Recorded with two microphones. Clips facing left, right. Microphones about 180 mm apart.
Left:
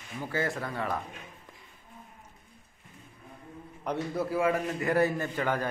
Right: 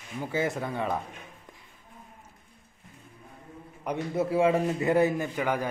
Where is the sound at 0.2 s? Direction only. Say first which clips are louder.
Right 3 dB; 20° right (ahead or behind).